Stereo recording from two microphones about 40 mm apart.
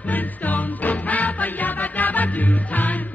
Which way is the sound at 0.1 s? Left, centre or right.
Left.